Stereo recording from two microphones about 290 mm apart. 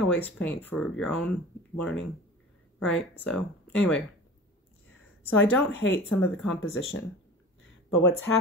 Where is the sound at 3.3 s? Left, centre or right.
Centre.